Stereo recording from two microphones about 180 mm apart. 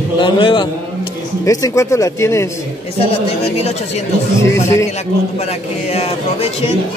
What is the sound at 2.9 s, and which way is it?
Speech, 35° left (ahead or behind).